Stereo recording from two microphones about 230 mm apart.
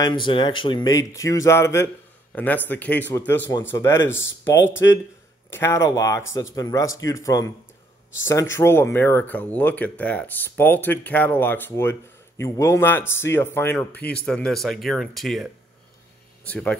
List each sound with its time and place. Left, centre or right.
0.0 s speech: centre
16.4 s speech: centre